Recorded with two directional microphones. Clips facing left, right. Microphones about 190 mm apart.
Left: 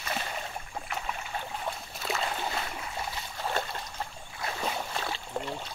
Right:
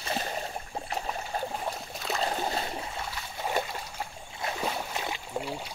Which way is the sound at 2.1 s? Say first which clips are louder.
Right 4 dB; 35° right (ahead or behind).